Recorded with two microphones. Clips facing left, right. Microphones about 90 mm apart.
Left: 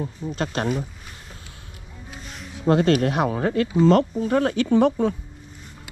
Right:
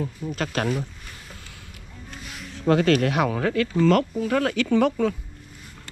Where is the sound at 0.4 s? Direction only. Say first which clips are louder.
Left 1 dB; 30° left (ahead or behind).